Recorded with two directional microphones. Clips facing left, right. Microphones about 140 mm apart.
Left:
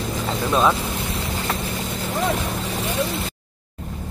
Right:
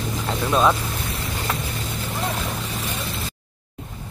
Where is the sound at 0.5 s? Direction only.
Centre (ahead or behind).